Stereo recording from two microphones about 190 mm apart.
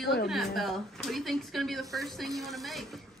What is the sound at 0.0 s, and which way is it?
Speech, 55° left (ahead or behind).